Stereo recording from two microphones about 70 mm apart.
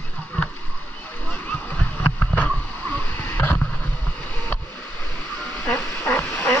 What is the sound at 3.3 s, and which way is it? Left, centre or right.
Vehicle, left.